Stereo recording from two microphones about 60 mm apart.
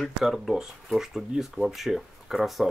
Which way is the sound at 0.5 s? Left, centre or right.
Centre.